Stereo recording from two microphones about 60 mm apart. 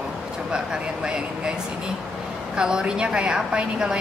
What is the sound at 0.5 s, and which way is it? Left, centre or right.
A woman's voice, centre.